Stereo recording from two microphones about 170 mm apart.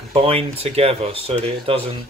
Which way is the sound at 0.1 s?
35° right (ahead or behind).